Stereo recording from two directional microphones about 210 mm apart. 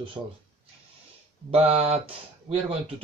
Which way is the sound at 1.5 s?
30° right (ahead or behind).